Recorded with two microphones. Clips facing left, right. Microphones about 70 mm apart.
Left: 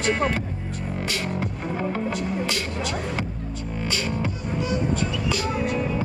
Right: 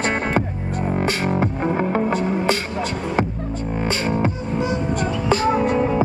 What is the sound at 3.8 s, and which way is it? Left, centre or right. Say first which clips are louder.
Music: right 6 dB; right.